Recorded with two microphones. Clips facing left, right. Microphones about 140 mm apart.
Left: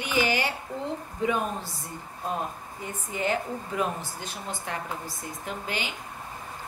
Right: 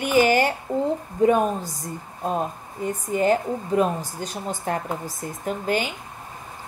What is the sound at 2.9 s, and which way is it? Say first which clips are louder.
Speech: right 8 dB; 40° right (ahead or behind).